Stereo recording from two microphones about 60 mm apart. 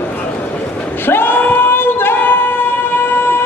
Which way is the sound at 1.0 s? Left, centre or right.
Left.